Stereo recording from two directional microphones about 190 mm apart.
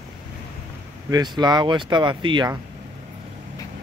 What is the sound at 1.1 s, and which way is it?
Speech, 20° right (ahead or behind).